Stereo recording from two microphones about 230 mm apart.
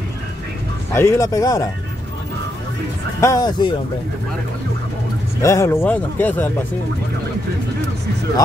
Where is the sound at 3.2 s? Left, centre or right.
Centre.